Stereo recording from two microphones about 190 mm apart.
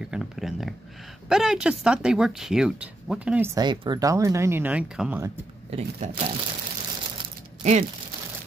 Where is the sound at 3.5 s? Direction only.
20° right (ahead or behind).